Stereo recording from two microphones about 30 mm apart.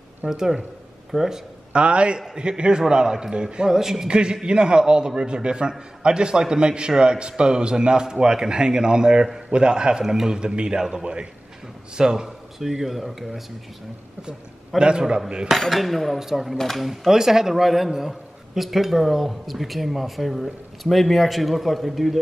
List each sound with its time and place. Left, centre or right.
0.2 s a man's voice: right
1.1 s a man's voice: centre
1.7 s a man's voice: right; by 4.1 s centre
4.1 s a man's voice: right
10.0 s a man's voice: centre
10.4 s a man's voice: right
10.7 s a man's voice: centre
12.5 s a man's voice: centre
14.8 s a man's voice: right
15.5 s a man's voice: centre
17.1 s a man's voice: centre